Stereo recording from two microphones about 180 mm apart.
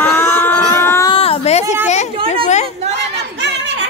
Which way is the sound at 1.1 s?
30° left (ahead or behind).